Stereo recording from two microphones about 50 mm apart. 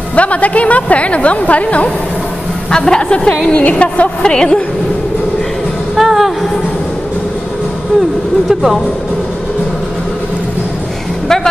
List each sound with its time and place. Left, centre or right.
0.1 s a woman's voice: left
2.7 s a woman's voice: centre
5.9 s music: centre
8.5 s speech: centre